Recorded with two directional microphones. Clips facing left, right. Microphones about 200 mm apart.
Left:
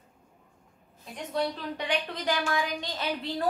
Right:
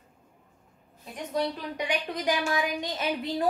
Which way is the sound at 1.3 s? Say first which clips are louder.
Right 1 dB; 10° right (ahead or behind).